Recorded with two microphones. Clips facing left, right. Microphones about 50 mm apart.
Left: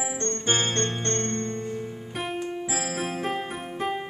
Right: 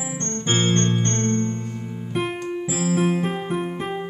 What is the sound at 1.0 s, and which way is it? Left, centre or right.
Music, right.